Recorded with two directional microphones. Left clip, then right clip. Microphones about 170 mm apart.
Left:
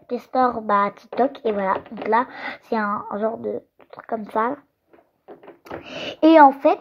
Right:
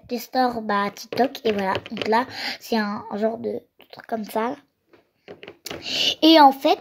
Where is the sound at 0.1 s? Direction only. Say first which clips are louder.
Left 2 dB; 30° right (ahead or behind).